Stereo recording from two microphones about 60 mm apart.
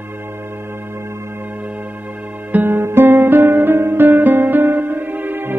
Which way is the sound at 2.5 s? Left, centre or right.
Right.